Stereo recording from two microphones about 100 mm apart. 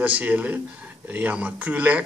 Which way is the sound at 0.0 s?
15° right (ahead or behind).